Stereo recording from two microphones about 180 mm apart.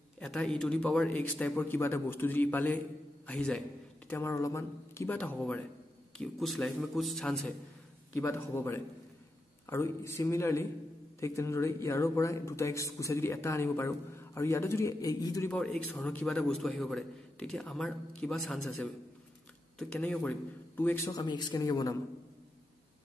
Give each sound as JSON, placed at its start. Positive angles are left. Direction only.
{"t": 0.2, "sound": "a man's voice", "side_deg": 5}
{"t": 8.2, "sound": "speech", "side_deg": 15}
{"t": 15.5, "sound": "a man's voice", "side_deg": 5}
{"t": 21.2, "sound": "a man's voice", "side_deg": 25}